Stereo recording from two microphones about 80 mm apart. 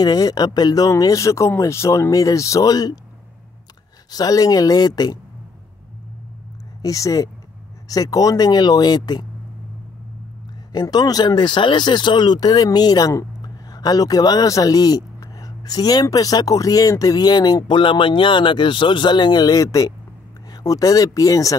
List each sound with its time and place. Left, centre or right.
0.0 s speech: left
4.1 s speech: left
6.8 s speech: left
10.7 s speech: left
13.1 s speech: left